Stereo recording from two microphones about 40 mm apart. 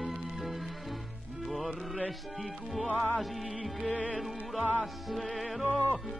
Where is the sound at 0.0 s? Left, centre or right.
Centre.